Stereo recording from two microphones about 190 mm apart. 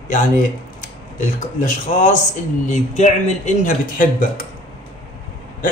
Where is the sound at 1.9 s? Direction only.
40° left (ahead or behind).